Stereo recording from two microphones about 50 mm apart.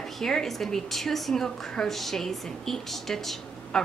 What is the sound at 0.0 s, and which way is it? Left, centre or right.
A woman's voice, centre.